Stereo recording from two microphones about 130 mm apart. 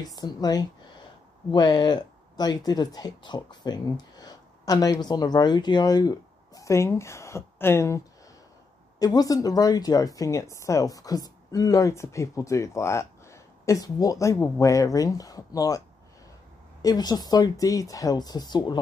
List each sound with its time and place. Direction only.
0.0 s speech: 30° left (ahead or behind)
9.0 s speech: 30° left (ahead or behind)
16.8 s speech: 30° left (ahead or behind)